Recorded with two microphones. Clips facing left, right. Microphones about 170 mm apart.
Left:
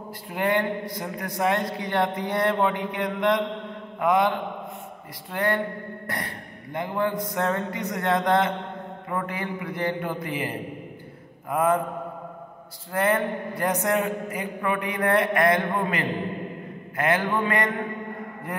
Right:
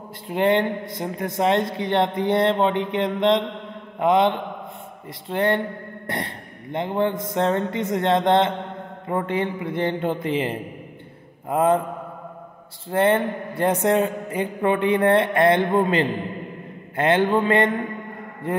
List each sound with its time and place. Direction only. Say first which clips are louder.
0.3 s speech: right 5 dB; 25° right (ahead or behind)
5.3 s speech: right 4 dB; 25° right (ahead or behind)
12.9 s speech: right 4 dB; 25° right (ahead or behind)